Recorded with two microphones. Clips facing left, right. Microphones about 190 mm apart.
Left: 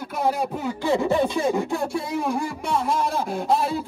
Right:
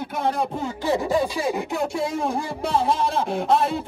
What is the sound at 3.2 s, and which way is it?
Speech, centre (ahead or behind).